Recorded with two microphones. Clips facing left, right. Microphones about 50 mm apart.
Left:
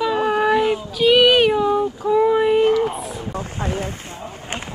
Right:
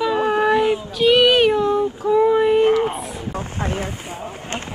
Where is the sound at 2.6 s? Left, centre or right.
Right.